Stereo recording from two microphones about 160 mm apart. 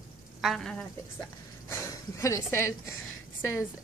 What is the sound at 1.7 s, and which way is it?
Speech, 20° left (ahead or behind).